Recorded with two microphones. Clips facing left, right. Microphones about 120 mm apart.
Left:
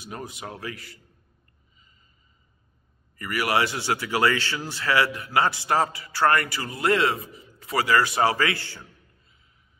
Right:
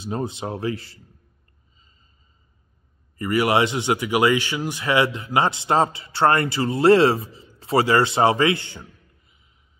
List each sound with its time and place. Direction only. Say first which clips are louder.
0.0 s speech: right 9 dB; 25° right (ahead or behind)
3.2 s speech: right 5 dB; 25° right (ahead or behind)